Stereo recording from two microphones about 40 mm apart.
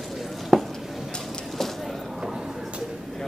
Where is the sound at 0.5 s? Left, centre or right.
Centre.